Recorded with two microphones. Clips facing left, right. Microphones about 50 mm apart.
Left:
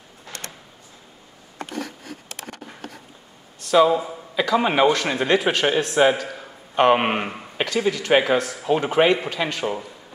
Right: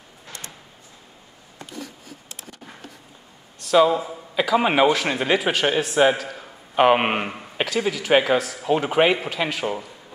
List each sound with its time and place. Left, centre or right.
1.6 s a sound: left
3.5 s speech: centre
4.4 s a man's voice: centre